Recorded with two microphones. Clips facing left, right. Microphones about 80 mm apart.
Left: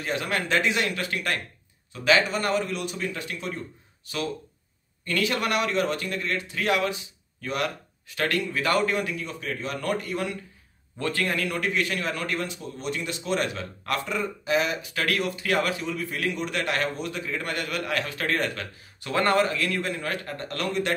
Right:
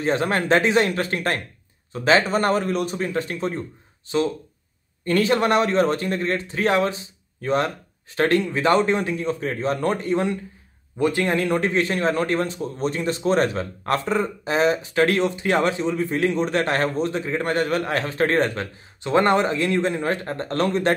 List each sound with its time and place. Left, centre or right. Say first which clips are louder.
0.0 s a man's voice: right 7 dB; right